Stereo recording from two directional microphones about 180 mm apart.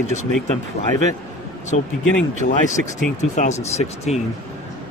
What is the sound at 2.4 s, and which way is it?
Speech, 45° left (ahead or behind).